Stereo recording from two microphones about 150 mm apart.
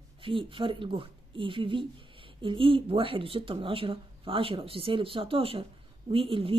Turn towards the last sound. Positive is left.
turn(degrees=-35)  # may be behind; listen again after turning